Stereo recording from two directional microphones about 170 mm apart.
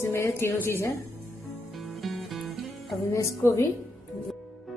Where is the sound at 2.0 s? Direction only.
Centre (ahead or behind).